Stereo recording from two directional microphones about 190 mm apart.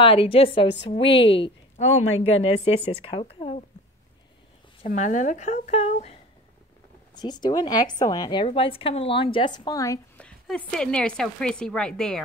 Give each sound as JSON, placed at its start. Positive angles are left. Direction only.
{"t": 0.0, "sound": "a woman's voice", "side_deg": 30}
{"t": 0.7, "sound": "a woman's voice", "side_deg": 65}
{"t": 0.9, "sound": "a woman's voice", "side_deg": 30}
{"t": 4.8, "sound": "speech", "side_deg": 40}
{"t": 7.2, "sound": "a woman's voice", "side_deg": 20}
{"t": 10.1, "sound": "a woman's voice", "side_deg": 5}